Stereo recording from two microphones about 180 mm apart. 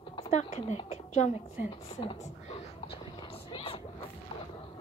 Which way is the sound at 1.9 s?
30° left (ahead or behind).